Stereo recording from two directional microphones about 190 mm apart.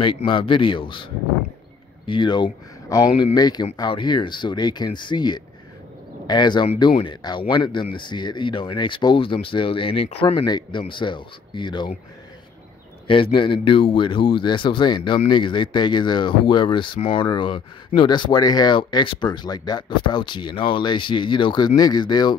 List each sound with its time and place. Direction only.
0.0 s speech: 25° left (ahead or behind)
13.0 s speech: 25° left (ahead or behind)